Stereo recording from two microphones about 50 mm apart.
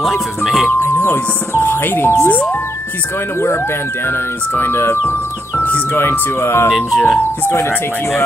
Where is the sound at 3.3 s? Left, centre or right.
Left.